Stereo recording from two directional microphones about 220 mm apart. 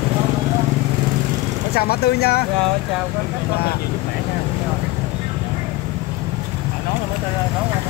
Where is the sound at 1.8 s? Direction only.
45° left (ahead or behind).